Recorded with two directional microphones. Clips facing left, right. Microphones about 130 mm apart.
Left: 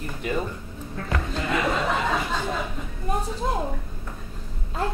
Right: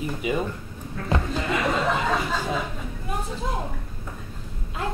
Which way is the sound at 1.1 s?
25° right (ahead or behind).